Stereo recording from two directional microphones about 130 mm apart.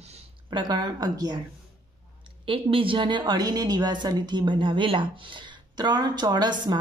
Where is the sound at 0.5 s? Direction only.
35° right (ahead or behind).